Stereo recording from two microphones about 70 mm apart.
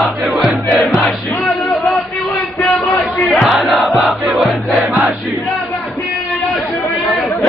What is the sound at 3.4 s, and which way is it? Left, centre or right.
Crowd, centre.